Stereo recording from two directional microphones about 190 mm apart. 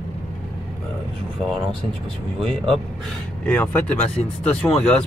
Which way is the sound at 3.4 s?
10° left (ahead or behind).